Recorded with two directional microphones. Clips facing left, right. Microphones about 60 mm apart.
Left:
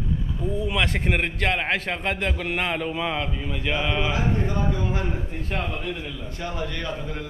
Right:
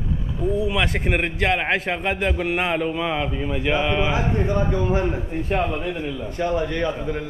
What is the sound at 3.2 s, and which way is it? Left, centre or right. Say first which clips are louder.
A man's voice: right 5 dB; centre.